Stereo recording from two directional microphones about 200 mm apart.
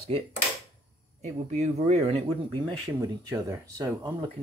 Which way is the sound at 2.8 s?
15° right (ahead or behind).